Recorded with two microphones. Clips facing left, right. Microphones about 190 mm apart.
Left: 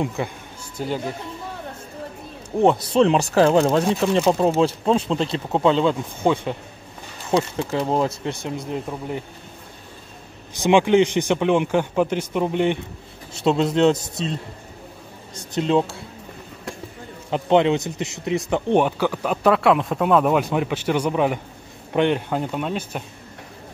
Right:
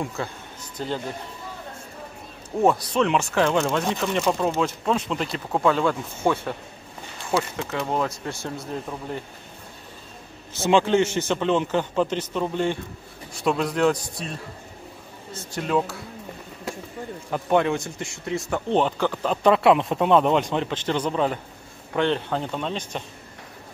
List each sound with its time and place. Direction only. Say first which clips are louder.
0.0 s speech: left 4 dB; 15° left (ahead or behind)
2.6 s speech: left 4 dB; 25° left (ahead or behind)
10.5 s speech: left 3 dB; 15° left (ahead or behind)
17.3 s speech: left 4 dB; 20° left (ahead or behind)